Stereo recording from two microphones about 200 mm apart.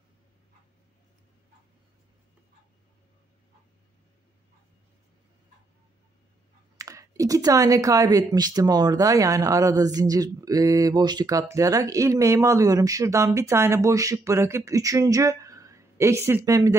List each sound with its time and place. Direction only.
6.8 s speech: 15° right (ahead or behind)